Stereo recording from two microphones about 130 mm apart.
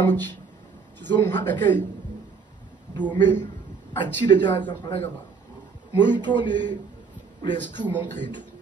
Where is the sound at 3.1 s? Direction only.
15° left (ahead or behind).